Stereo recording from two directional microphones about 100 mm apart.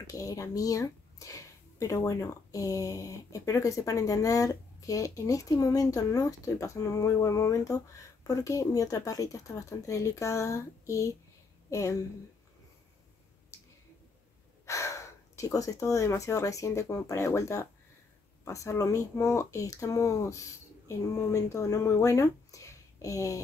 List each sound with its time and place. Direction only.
0.0 s speech: 35° left (ahead or behind)
13.5 s a sound: 30° left (ahead or behind)
14.7 s speech: 30° left (ahead or behind)